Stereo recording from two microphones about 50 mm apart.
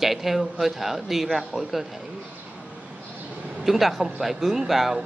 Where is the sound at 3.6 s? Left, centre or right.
Centre.